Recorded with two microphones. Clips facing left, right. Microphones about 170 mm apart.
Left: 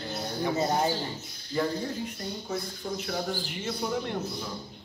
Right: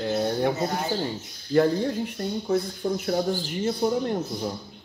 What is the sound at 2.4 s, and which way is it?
Speech, 45° right (ahead or behind).